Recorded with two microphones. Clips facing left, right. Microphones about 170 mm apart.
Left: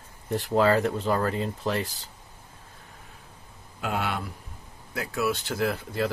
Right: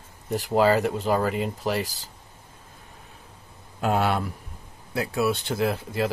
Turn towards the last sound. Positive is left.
turn(degrees=-20)  # may be behind; listen again after turning